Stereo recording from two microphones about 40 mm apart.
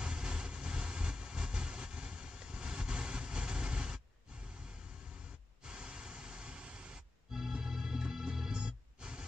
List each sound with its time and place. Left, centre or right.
0.0 s vehicle: right
5.7 s a sound: right
7.3 s music: centre